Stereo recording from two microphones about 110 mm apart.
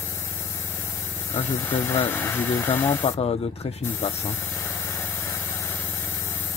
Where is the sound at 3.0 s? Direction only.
55° left (ahead or behind).